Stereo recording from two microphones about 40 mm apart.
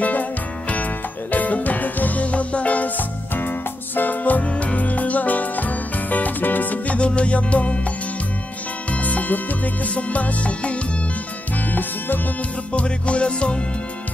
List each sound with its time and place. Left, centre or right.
0.0 s music: left
3.3 s music: left
4.5 s music: left
7.0 s music: left
8.9 s music: left
11.5 s music: left
12.7 s music: left